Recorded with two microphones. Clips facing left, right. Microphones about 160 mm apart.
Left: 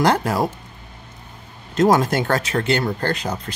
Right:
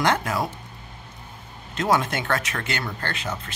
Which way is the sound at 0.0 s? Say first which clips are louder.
Left 5 dB; 35° left (ahead or behind).